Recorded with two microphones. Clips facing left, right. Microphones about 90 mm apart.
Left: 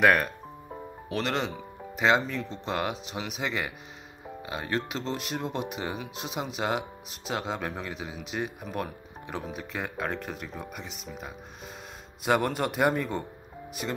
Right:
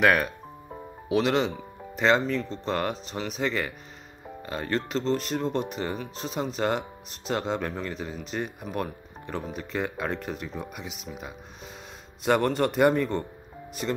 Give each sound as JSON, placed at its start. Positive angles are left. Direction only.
{"t": 0.0, "sound": "music", "side_deg": 0}
{"t": 1.0, "sound": "speech", "side_deg": -5}